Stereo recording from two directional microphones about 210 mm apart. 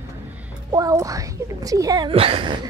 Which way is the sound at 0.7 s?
15° right (ahead or behind).